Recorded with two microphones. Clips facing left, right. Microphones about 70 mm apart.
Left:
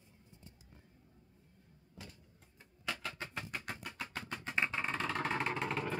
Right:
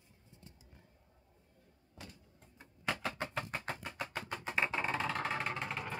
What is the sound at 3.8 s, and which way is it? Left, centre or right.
Music, centre.